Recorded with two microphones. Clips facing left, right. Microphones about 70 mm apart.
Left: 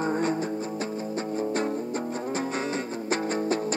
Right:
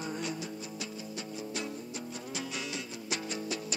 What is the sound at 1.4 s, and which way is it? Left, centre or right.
Music, left.